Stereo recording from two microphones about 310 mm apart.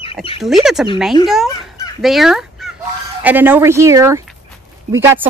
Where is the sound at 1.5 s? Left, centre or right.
Centre.